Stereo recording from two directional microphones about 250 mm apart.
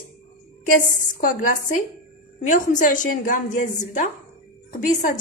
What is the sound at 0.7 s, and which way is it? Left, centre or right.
A woman's voice, left.